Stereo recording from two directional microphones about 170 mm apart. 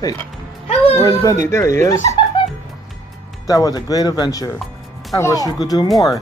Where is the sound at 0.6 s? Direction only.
35° left (ahead or behind).